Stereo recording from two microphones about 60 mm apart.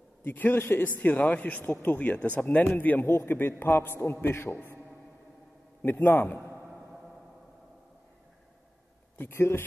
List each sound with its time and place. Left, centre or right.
0.2 s a man's voice: left
3.1 s a man's voice: left
3.3 s a man's voice: left
5.8 s a sound: left
6.7 s music: centre
9.2 s a man's voice: left